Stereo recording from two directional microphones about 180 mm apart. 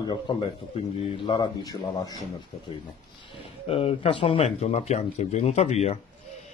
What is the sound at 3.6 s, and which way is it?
Speech, 30° left (ahead or behind).